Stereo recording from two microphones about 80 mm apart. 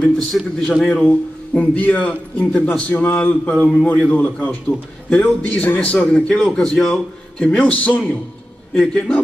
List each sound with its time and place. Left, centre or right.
0.3 s a man's voice: centre